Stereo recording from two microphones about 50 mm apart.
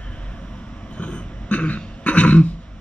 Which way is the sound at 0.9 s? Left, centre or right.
Left.